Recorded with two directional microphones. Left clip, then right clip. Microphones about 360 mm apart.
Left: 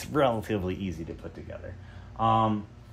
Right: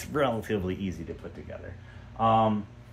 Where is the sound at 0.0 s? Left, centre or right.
Centre.